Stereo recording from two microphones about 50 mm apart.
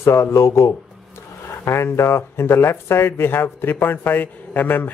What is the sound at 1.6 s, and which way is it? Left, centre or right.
Speech, left.